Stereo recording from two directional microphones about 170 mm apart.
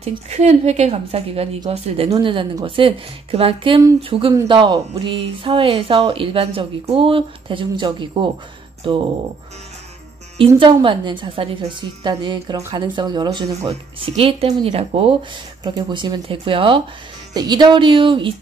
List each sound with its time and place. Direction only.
0.3 s speech: 40° right (ahead or behind)
10.3 s speech: 30° right (ahead or behind)